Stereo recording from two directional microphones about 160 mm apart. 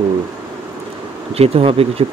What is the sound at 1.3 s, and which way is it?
Speech, 40° right (ahead or behind).